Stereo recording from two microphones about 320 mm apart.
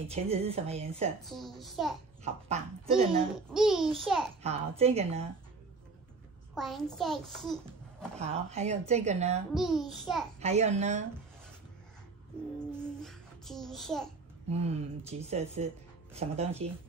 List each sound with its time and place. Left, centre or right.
0.1 s speech: centre
1.2 s a child's voice: centre
2.2 s speech: centre
3.5 s a child's voice: centre
4.4 s speech: centre
6.5 s a child's voice: centre
8.2 s speech: centre
9.5 s a child's voice: centre
10.4 s speech: right
12.7 s child singing: centre
14.5 s speech: centre